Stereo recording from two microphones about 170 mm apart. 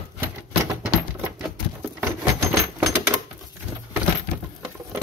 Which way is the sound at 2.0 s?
20° right (ahead or behind).